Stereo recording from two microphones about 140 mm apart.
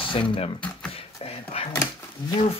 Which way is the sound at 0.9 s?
45° left (ahead or behind).